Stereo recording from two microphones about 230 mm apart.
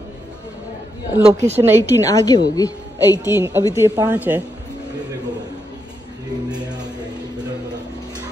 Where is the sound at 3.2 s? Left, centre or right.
Centre.